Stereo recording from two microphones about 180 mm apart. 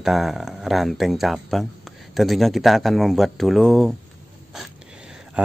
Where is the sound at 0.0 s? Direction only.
Centre (ahead or behind).